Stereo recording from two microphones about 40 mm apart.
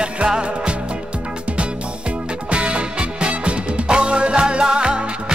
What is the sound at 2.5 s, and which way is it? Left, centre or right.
Music, right.